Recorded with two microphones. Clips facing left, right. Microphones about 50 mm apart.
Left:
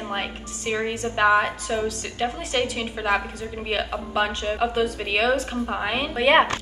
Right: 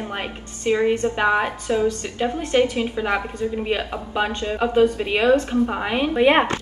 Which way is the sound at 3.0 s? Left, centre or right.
Centre.